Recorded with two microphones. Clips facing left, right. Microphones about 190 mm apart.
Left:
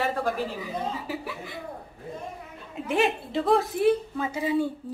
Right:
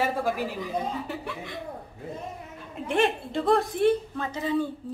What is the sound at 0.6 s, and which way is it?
A woman's voice, 5° left (ahead or behind).